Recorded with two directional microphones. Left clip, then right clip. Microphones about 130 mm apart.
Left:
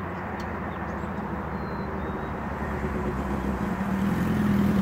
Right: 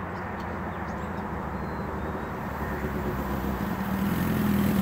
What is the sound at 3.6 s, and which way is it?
Vehicle, 90° right.